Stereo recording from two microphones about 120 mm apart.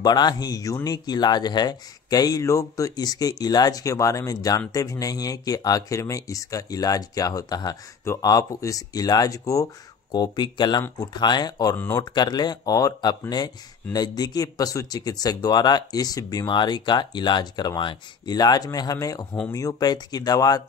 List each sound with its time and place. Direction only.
0.0 s speech: 35° left (ahead or behind)